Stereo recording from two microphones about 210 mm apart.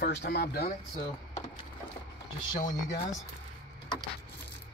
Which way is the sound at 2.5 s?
40° left (ahead or behind).